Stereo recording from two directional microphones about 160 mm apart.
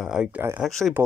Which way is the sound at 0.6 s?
5° left (ahead or behind).